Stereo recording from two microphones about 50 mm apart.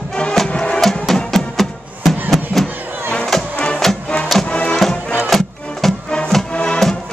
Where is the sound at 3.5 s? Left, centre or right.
Centre.